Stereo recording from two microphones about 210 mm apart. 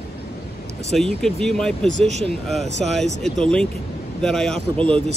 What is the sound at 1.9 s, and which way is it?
Speech, 30° right (ahead or behind).